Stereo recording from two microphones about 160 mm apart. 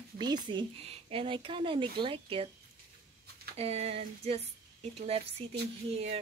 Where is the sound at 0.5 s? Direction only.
35° right (ahead or behind).